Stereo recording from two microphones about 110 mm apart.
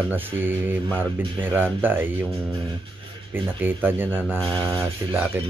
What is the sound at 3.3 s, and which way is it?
Speech, 20° right (ahead or behind).